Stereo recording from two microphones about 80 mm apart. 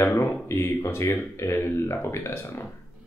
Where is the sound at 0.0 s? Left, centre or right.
Left.